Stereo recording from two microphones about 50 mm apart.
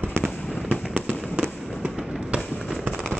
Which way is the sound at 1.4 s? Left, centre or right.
Right.